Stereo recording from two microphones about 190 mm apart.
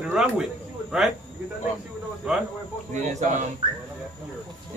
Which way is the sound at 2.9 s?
40° right (ahead or behind).